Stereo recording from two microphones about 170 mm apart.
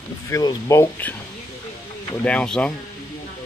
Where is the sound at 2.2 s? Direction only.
5° left (ahead or behind).